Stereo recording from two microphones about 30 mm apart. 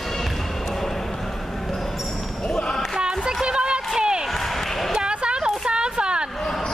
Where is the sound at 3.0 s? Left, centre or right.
Right.